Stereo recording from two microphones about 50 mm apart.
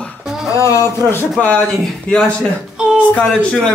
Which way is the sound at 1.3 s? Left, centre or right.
Left.